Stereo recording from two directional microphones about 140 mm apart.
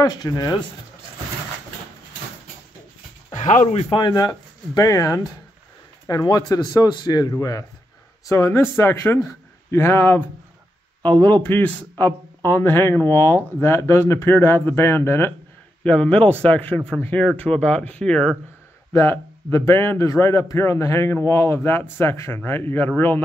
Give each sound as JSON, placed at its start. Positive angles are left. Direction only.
{"t": 0.0, "sound": "a man's voice", "side_deg": 30}
{"t": 3.3, "sound": "speech", "side_deg": 55}
{"t": 3.9, "sound": "a man's voice", "side_deg": 30}
{"t": 11.4, "sound": "speech", "side_deg": 10}
{"t": 18.9, "sound": "a man's voice", "side_deg": 20}